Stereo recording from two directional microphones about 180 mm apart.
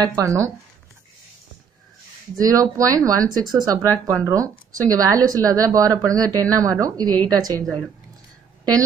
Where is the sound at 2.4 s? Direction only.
20° right (ahead or behind).